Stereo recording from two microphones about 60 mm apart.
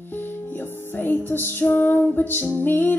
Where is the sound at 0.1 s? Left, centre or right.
Left.